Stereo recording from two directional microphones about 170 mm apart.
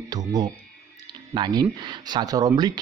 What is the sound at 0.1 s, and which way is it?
Speech, 25° right (ahead or behind).